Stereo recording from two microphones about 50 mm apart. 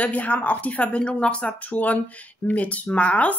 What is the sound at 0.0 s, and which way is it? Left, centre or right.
Speech, left.